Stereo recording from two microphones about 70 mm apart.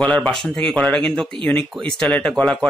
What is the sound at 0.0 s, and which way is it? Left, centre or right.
Speech, centre.